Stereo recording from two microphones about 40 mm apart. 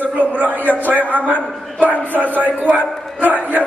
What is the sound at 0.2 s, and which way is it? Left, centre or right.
A man's voice, right.